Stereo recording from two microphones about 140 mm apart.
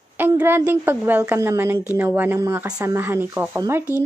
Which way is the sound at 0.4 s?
15° right (ahead or behind).